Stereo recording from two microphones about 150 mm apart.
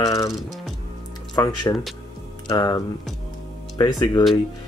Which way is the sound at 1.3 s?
25° left (ahead or behind).